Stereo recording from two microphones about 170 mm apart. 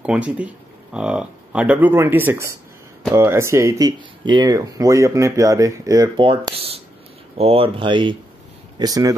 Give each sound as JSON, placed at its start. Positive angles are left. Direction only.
{"t": 0.0, "sound": "speech", "side_deg": -5}
{"t": 6.2, "sound": "speech", "side_deg": -30}